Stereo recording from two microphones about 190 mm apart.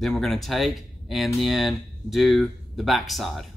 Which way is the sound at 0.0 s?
Centre (ahead or behind).